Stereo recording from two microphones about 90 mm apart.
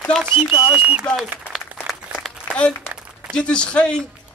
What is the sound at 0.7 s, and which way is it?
Speech, 15° right (ahead or behind).